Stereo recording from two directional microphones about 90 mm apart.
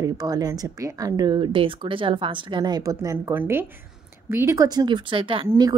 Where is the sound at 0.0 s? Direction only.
45° right (ahead or behind).